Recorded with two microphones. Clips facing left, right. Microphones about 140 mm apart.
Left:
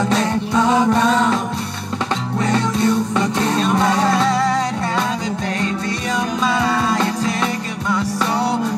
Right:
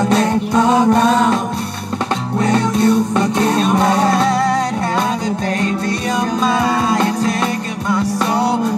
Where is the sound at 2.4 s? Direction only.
45° right (ahead or behind).